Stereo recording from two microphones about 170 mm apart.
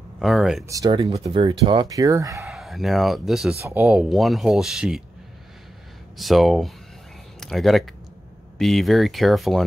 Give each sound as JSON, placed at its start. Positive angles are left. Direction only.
{"t": 0.2, "sound": "speech", "side_deg": 0}
{"t": 0.7, "sound": "speech", "side_deg": -25}
{"t": 2.4, "sound": "speech", "side_deg": 0}
{"t": 6.1, "sound": "speech", "side_deg": 0}